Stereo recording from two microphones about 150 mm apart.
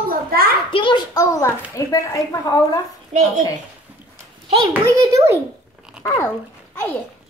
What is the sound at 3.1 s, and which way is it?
Speech, 55° right (ahead or behind).